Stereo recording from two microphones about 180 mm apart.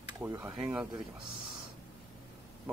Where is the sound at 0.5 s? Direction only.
5° right (ahead or behind).